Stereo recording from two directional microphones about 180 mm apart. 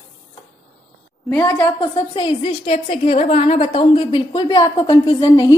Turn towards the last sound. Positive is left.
turn(degrees=25)  # may be behind; listen again after turning